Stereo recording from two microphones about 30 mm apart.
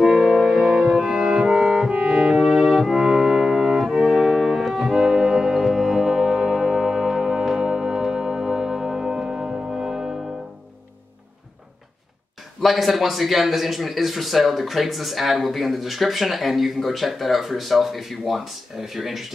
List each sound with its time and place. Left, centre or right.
0.0 s music: centre
0.7 s music: right
12.6 s speech: centre